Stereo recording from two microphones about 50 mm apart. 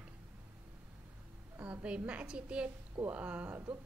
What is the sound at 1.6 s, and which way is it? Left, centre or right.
A woman's voice, right.